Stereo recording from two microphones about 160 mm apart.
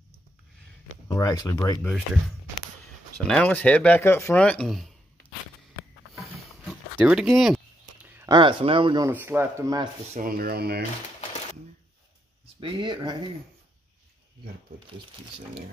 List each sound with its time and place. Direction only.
1.0 s speech: 25° left (ahead or behind)
3.2 s speech: 5° left (ahead or behind)
6.1 s a sound: centre (ahead or behind)
8.3 s speech: 30° right (ahead or behind)
9.0 s speech: 15° right (ahead or behind)
10.1 s speech: 65° right (ahead or behind); by 10.8 s 80° right
12.5 s speech: 30° right (ahead or behind)